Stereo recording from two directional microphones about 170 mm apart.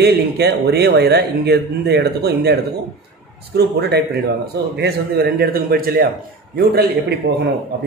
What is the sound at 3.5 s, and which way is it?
A man's voice, 75° right (ahead or behind).